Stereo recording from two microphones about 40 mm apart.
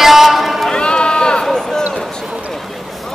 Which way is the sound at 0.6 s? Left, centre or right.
Left.